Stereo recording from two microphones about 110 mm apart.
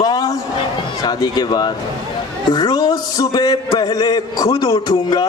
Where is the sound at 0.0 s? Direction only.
40° left (ahead or behind).